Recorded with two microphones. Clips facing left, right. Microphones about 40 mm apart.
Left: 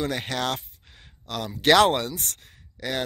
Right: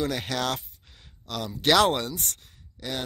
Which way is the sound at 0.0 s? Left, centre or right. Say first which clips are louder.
Left 1 dB; left.